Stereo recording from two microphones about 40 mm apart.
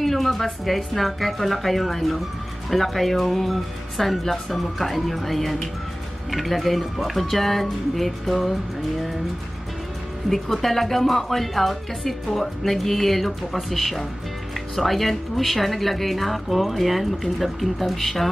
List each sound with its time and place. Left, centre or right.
0.0 s speech: centre
10.3 s speech: centre